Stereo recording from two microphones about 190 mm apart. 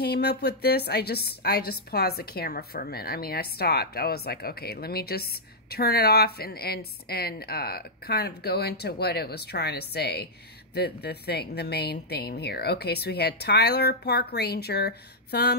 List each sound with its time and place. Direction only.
0.0 s a woman's voice: 60° left (ahead or behind)